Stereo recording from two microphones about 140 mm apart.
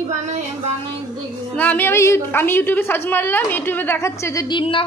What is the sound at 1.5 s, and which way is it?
A woman's voice, 10° left (ahead or behind).